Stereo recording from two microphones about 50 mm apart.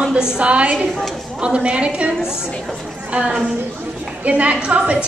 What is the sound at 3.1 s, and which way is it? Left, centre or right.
A woman's voice, right.